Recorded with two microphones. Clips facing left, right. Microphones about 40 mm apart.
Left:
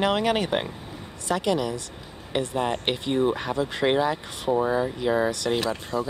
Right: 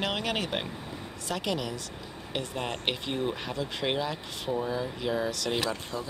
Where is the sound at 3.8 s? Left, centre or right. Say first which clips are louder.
Left 8 dB; left.